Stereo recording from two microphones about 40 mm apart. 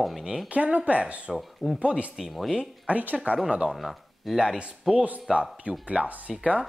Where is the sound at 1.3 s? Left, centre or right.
Centre.